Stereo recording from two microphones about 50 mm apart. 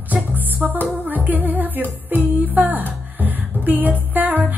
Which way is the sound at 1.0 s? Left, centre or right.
Right.